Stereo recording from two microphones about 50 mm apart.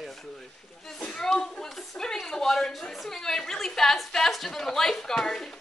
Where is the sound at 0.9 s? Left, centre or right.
Centre.